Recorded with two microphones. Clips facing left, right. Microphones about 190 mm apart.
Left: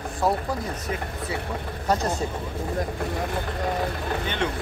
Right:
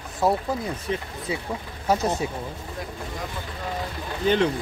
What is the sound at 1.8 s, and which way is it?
Speech, 5° right (ahead or behind).